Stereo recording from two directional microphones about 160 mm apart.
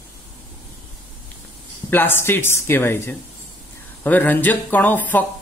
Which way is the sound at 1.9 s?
15° left (ahead or behind).